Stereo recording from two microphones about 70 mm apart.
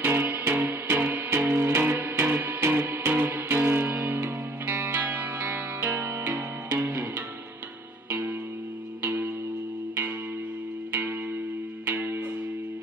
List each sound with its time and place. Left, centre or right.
0.0 s music: right
9.0 s music: right
10.9 s music: right